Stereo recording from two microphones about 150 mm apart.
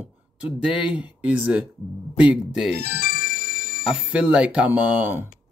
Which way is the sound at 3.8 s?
5° right (ahead or behind).